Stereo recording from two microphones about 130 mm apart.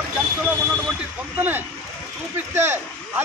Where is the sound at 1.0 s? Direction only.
15° right (ahead or behind).